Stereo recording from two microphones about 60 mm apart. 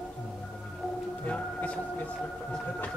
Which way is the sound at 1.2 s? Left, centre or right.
Left.